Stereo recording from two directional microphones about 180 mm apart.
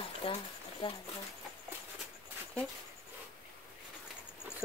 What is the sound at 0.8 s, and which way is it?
Speech, 30° left (ahead or behind).